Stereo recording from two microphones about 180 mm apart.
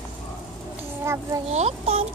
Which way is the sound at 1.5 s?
35° right (ahead or behind).